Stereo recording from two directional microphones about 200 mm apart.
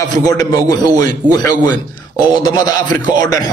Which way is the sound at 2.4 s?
20° left (ahead or behind).